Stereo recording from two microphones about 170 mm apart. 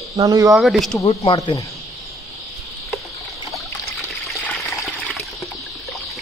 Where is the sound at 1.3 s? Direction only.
20° left (ahead or behind).